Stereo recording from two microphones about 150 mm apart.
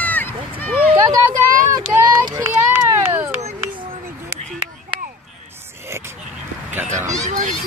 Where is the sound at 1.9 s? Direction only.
30° right (ahead or behind).